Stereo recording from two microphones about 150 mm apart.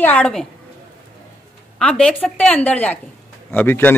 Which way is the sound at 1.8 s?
5° left (ahead or behind).